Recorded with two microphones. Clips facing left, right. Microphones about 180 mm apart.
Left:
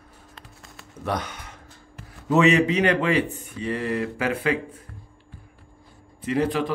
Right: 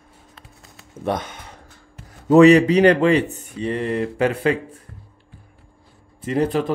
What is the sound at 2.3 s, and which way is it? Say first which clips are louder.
Speech: right 8 dB; 40° right (ahead or behind).